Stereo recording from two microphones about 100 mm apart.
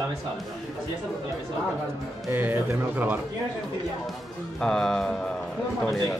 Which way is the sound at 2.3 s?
20° right (ahead or behind).